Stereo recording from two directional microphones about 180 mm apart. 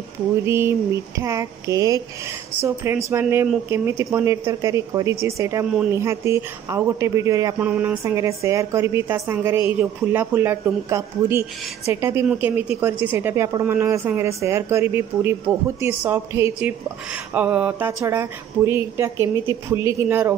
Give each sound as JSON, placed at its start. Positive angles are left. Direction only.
{"t": 0.5, "sound": "speech", "side_deg": -15}